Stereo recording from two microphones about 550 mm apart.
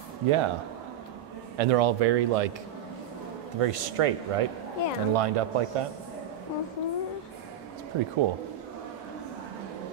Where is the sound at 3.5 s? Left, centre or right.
Right.